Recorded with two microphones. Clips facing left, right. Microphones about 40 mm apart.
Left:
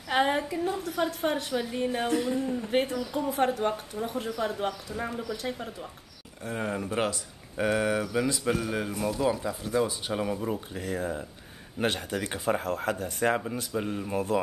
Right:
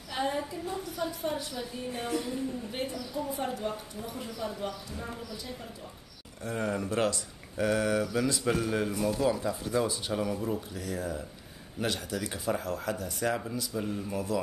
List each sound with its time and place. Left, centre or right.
0.1 s speech: left
6.4 s speech: centre
8.3 s speech: centre; by 14.2 s left